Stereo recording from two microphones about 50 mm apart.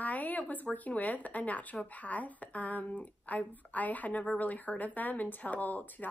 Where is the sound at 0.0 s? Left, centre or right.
Left.